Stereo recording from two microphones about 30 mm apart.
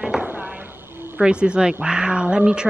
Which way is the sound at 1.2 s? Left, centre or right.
Right.